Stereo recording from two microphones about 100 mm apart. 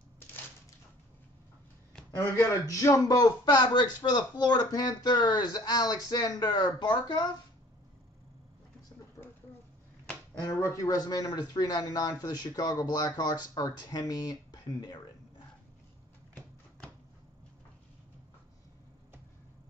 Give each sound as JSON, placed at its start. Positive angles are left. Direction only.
{"t": 2.1, "sound": "a man's voice", "side_deg": 30}
{"t": 10.4, "sound": "speech", "side_deg": 30}